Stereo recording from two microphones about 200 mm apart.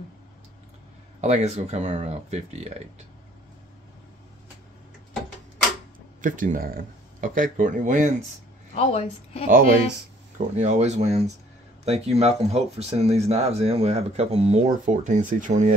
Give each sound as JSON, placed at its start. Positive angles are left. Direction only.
{"t": 1.2, "sound": "speech", "side_deg": -35}
{"t": 6.2, "sound": "speech", "side_deg": -40}
{"t": 8.7, "sound": "a woman's voice", "side_deg": 30}
{"t": 9.5, "sound": "speech", "side_deg": -45}
{"t": 10.3, "sound": "speech", "side_deg": -35}